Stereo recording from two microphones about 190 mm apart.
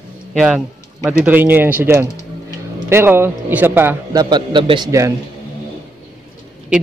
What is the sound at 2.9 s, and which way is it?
A man's voice, 10° right (ahead or behind).